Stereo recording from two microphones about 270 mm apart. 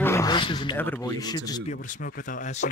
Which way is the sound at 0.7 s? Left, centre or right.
Centre.